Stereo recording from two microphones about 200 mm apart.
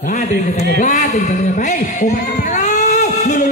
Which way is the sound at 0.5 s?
55° right (ahead or behind).